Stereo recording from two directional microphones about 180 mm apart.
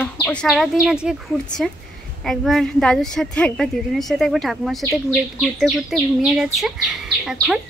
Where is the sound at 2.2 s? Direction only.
Centre (ahead or behind).